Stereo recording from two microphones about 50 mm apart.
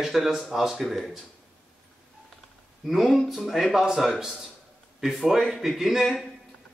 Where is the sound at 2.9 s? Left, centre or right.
Centre.